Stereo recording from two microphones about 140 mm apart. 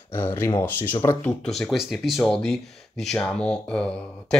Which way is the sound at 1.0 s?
30° left (ahead or behind).